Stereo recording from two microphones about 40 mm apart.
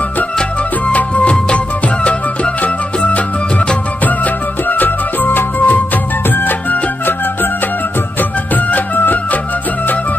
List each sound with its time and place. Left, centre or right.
0.8 s music: left
2.6 s music: left
8.7 s music: left